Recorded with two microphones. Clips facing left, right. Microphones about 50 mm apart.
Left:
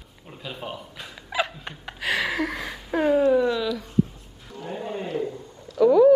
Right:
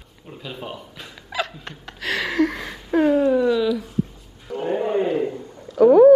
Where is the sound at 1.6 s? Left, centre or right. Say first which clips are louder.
Even; centre.